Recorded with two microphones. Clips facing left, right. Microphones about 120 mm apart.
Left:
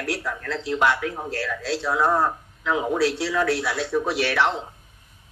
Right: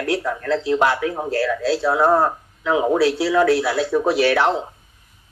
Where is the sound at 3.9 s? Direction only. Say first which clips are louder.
Right 7 dB; 35° right (ahead or behind).